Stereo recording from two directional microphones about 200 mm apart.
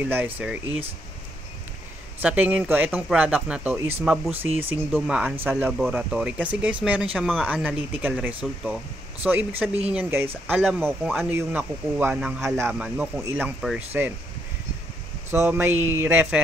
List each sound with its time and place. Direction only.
0.0 s speech: 10° right (ahead or behind)
2.2 s speech: 10° right (ahead or behind)
15.3 s speech: 10° right (ahead or behind)